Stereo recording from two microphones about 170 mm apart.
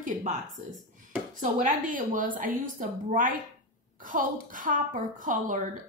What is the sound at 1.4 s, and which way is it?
A woman's voice, 50° right (ahead or behind).